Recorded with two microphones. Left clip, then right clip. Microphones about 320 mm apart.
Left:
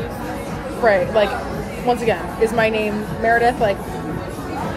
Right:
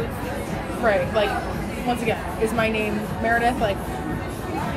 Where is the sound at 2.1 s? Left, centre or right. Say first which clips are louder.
Left 5 dB; left.